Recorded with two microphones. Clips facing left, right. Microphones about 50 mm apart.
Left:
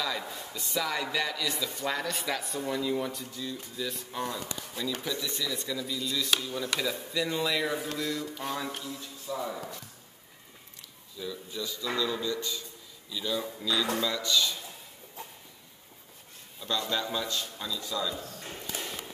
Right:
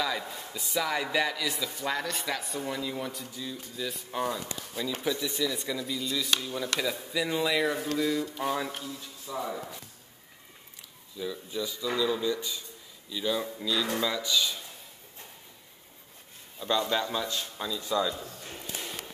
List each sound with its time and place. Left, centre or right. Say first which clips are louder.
0.0 s a man's voice: right 2 dB; centre
11.1 s a man's voice: right 3 dB; centre
16.5 s speech: right 4 dB; centre